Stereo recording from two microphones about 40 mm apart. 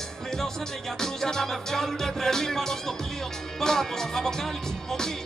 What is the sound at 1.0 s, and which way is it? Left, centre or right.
Speech, centre.